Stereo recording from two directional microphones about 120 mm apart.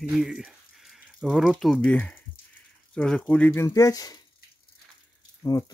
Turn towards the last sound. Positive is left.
turn(degrees=30)  # may be behind; listen again after turning